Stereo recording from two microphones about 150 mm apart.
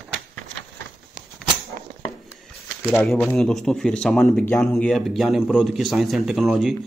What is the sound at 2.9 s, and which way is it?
A man's voice, 5° left (ahead or behind).